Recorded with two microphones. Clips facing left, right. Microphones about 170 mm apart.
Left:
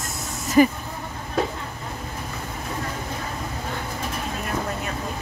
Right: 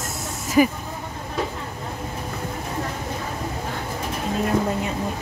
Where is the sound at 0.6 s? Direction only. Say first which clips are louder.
Left 1 dB; 5° right (ahead or behind).